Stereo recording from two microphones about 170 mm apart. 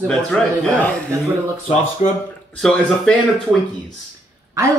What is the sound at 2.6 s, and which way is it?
Speech, 5° left (ahead or behind).